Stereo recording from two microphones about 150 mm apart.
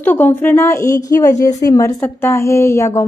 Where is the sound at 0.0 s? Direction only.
10° left (ahead or behind).